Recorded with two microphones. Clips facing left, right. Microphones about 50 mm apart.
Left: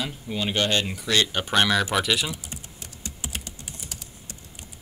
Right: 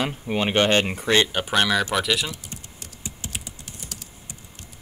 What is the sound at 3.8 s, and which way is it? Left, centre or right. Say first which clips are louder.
Typing: right 3 dB; centre.